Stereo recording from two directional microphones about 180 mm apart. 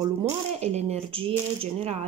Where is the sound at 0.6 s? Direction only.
35° right (ahead or behind).